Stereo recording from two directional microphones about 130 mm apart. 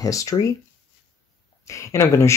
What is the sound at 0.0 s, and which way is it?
Speech, 25° left (ahead or behind).